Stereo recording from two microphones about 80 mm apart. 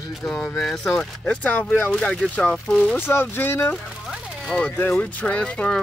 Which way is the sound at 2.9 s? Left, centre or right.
Left.